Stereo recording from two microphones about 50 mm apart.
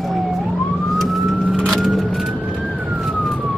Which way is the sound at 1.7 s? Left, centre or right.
Centre.